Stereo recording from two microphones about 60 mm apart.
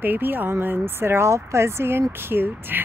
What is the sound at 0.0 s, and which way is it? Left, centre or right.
Speech, right.